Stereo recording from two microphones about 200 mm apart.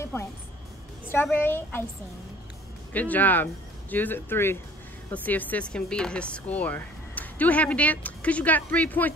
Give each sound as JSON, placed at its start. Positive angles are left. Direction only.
{"t": 0.0, "sound": "music", "side_deg": 15}
{"t": 1.0, "sound": "speech", "side_deg": 10}
{"t": 2.9, "sound": "speech", "side_deg": 10}